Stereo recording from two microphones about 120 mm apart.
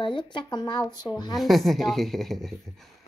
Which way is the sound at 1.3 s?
Centre (ahead or behind).